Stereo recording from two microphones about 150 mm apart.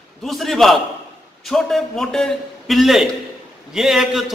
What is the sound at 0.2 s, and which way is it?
A man's voice, centre (ahead or behind).